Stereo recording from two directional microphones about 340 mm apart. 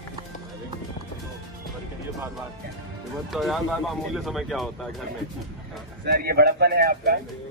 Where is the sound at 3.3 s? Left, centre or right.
Centre.